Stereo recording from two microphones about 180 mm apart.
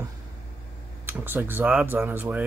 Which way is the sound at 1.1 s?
10° right (ahead or behind).